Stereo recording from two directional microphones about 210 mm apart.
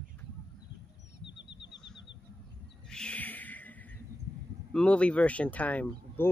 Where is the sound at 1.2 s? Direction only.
55° left (ahead or behind).